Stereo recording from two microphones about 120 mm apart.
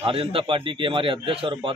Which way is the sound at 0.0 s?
50° right (ahead or behind).